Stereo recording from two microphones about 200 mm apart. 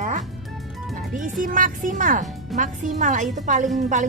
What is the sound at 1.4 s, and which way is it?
Speech, 40° right (ahead or behind).